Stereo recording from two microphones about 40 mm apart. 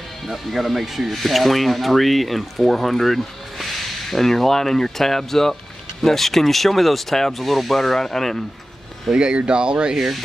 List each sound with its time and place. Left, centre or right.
0.3 s speech: centre
9.1 s speech: right
9.9 s speech: centre